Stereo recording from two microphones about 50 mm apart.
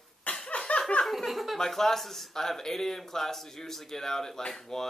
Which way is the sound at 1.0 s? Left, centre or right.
Centre.